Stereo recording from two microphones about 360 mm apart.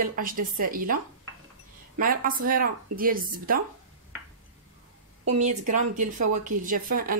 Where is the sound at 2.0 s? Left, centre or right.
Right.